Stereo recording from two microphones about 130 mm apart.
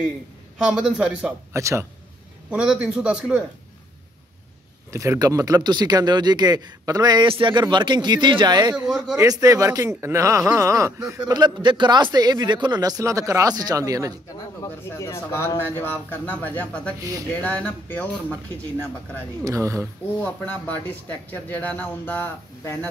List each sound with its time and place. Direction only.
0.6 s speech: 5° right (ahead or behind)
1.5 s speech: 20° right (ahead or behind)
2.5 s speech: 5° right (ahead or behind)
4.9 s speech: 25° right (ahead or behind)
14.6 s speech: 20° left (ahead or behind)
19.4 s speech: 20° right (ahead or behind)
20.2 s speech: 10° left (ahead or behind)